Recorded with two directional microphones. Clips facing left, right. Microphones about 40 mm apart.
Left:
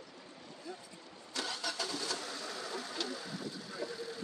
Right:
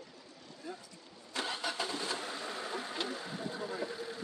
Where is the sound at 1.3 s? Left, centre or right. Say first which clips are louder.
Right 2 dB; right.